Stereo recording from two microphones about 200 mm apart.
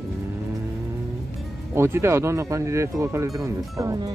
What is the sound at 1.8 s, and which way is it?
Speech, 15° right (ahead or behind).